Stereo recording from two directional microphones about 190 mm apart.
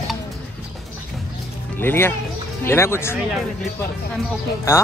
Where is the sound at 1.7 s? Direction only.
10° left (ahead or behind).